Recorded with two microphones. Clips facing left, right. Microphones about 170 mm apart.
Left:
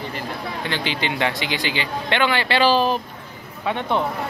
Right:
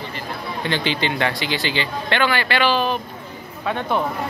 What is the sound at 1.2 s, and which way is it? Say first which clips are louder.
Speech: right 1 dB; 15° left (ahead or behind).